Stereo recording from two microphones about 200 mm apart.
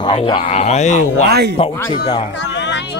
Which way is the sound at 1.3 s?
55° right (ahead or behind).